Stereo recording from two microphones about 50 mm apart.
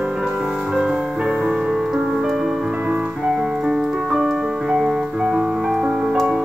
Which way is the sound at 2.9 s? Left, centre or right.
Centre.